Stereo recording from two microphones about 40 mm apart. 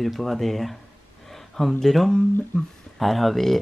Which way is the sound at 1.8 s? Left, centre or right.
Centre.